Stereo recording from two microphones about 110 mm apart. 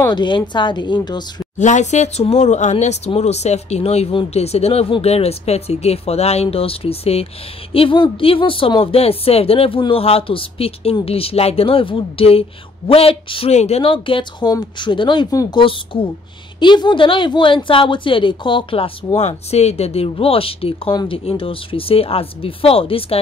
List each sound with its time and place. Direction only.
0.1 s a woman's voice: 45° left (ahead or behind)
1.6 s speech: 90° left
3.1 s a woman's voice: 80° left; by 13.5 s 55° left (ahead or behind)
13.5 s speech: 85° left
13.8 s a woman's voice: 50° left (ahead or behind)